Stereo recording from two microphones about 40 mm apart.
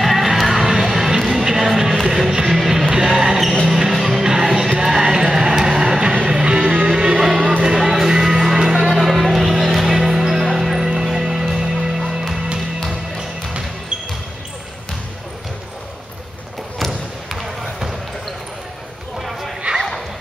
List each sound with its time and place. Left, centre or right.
0.0 s music: centre
2.9 s basketball bounce: centre
4.2 s music: centre
8.8 s music: centre
10.5 s clip-clop: centre
10.9 s music: centre
17.3 s basketball bounce: centre
19.1 s a sound: centre